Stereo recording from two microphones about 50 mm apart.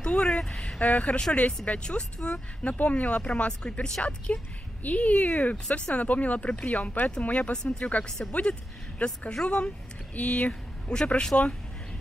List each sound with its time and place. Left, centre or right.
0.0 s a sound: centre
0.4 s speech: centre
0.7 s speech: left
5.9 s speech: left
7.5 s speech: centre
8.3 s speech: left
10.9 s speech: centre